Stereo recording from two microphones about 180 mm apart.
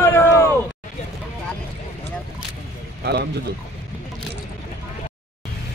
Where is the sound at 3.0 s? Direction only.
70° right (ahead or behind).